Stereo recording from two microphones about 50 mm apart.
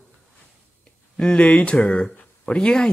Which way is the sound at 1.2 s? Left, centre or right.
Left.